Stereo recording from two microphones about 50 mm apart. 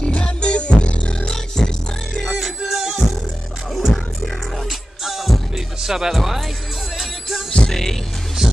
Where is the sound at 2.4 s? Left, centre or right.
Centre.